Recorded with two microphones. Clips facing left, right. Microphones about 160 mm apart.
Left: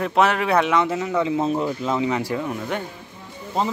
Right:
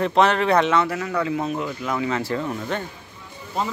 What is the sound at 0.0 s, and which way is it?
Speech, 5° left (ahead or behind).